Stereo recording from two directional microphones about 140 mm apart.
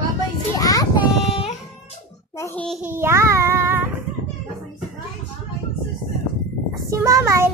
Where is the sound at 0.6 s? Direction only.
25° left (ahead or behind).